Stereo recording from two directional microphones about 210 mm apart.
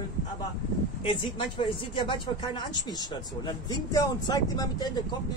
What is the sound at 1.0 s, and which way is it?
Speech, 25° left (ahead or behind).